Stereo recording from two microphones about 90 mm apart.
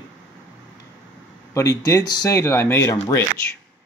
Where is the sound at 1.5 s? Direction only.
35° left (ahead or behind).